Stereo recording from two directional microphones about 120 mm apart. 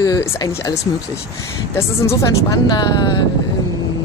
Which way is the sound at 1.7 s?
20° left (ahead or behind).